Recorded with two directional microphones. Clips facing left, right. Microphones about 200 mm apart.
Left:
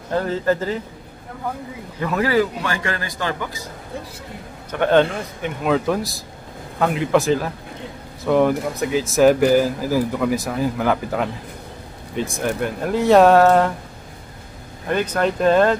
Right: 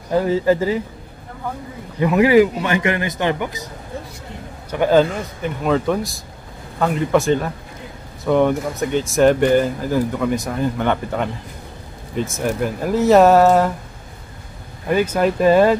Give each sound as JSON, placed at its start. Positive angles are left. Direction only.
{"t": 0.1, "sound": "speech", "side_deg": -10}
{"t": 2.0, "sound": "a man's voice", "side_deg": -15}
{"t": 4.6, "sound": "speech", "side_deg": -5}
{"t": 14.9, "sound": "speech", "side_deg": -5}